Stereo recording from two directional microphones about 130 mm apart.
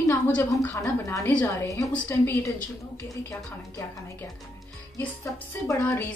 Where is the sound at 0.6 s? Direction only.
20° left (ahead or behind).